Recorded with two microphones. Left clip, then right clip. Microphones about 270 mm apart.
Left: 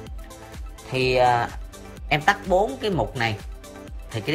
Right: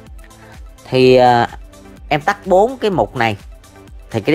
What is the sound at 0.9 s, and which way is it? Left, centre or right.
Speech, centre.